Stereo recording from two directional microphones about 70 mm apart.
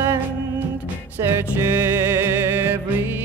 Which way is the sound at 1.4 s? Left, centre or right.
Right.